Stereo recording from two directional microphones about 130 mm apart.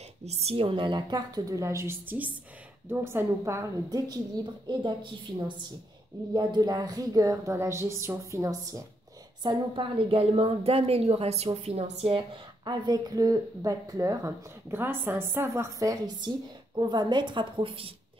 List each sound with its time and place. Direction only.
0.2 s a woman's voice: 55° right (ahead or behind); by 4.2 s 25° right (ahead or behind)
4.6 s a woman's voice: 35° right (ahead or behind)
6.3 s speech: 30° right (ahead or behind)
9.4 s a woman's voice: 40° right (ahead or behind)